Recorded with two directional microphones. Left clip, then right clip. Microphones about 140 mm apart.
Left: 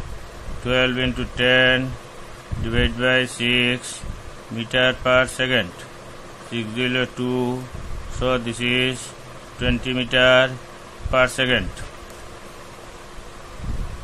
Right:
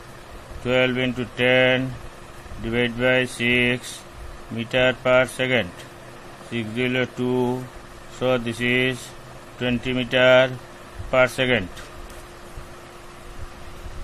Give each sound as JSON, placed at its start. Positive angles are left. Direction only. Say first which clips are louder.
{"t": 0.7, "sound": "speech", "louder": "left 1 dB", "side_deg": -15}